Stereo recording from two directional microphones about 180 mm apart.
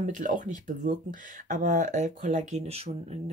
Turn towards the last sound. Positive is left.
turn(degrees=-35)  # may be behind; listen again after turning